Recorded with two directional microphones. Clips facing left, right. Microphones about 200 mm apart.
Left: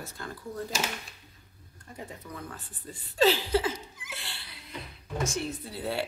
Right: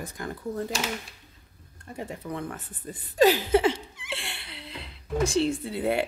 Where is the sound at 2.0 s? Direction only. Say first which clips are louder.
Right 7 dB; 70° right (ahead or behind).